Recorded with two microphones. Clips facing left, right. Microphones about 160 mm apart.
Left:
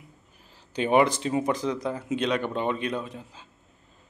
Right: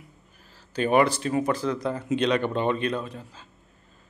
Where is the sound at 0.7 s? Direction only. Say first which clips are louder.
Even; 20° left (ahead or behind).